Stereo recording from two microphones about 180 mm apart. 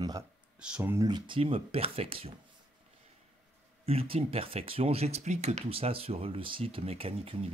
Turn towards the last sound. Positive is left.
turn(degrees=-35)  # may be behind; listen again after turning